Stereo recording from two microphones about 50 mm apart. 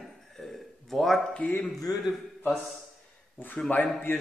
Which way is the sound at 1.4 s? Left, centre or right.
Left.